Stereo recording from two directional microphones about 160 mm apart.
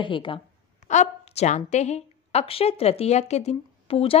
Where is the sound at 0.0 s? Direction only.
30° left (ahead or behind).